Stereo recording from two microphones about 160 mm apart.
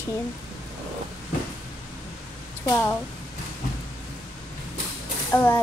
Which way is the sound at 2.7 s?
15° left (ahead or behind).